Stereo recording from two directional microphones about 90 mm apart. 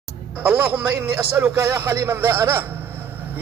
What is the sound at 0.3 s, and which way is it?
A man's voice, 25° right (ahead or behind).